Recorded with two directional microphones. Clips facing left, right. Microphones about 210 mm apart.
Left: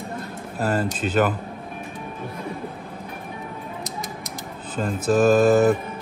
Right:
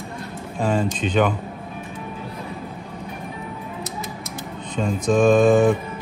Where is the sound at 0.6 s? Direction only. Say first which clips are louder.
Right 2 dB; 5° left (ahead or behind).